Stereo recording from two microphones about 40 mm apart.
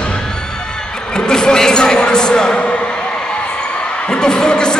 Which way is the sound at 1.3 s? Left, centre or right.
Centre.